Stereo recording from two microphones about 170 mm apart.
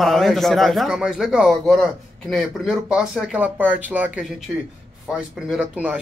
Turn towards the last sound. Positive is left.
turn(degrees=-10)  # may be behind; listen again after turning